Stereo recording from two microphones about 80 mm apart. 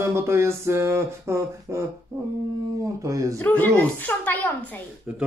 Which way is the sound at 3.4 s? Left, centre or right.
Centre.